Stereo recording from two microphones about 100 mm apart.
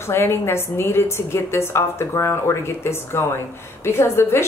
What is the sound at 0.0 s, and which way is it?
Speech, 25° left (ahead or behind).